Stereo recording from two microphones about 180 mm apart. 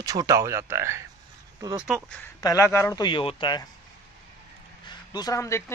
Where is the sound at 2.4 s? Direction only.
15° left (ahead or behind).